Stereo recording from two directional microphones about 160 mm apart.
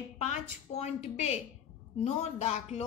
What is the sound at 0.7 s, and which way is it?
A woman's voice, 45° left (ahead or behind).